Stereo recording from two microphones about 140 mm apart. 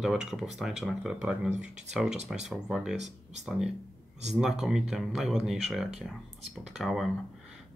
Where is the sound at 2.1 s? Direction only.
50° right (ahead or behind).